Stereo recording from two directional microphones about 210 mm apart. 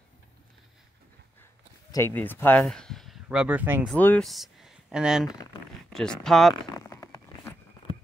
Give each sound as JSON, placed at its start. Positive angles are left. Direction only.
{"t": 1.9, "sound": "speech", "side_deg": 15}
{"t": 3.9, "sound": "speech", "side_deg": 5}
{"t": 6.5, "sound": "a sound", "side_deg": 15}